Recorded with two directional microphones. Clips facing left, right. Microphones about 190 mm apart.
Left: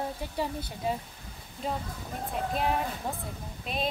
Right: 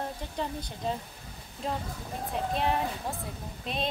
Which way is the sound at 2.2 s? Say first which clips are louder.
Even; centre (ahead or behind).